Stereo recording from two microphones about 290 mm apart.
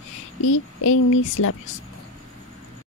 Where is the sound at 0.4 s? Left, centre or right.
Left.